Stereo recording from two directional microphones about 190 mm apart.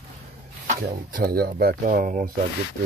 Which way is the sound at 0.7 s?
45° right (ahead or behind).